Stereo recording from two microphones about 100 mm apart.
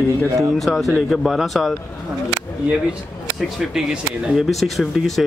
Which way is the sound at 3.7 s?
5° right (ahead or behind).